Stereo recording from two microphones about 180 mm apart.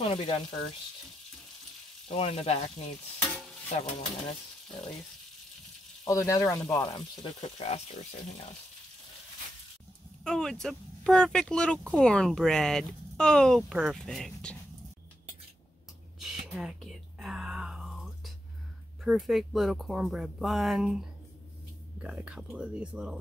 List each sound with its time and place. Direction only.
0.0 s speech: 30° left (ahead or behind)
2.0 s speech: 35° left (ahead or behind)
6.0 s speech: 15° left (ahead or behind)
7.2 s speech: 35° left (ahead or behind)
10.2 s speech: 5° left (ahead or behind)
16.2 s whispering: centre (ahead or behind)
19.0 s speech: centre (ahead or behind)